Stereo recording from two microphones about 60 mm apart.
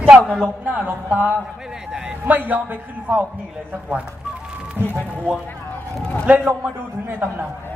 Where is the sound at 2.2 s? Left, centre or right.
Right.